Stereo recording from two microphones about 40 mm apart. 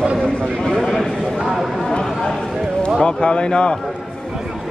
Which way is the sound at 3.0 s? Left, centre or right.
Left.